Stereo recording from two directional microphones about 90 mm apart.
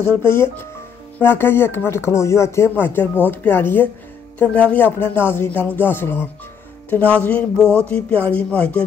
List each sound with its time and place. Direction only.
0.0 s speech: 25° left (ahead or behind)